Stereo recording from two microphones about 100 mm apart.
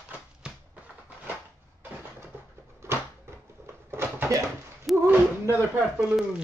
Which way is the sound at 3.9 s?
25° right (ahead or behind).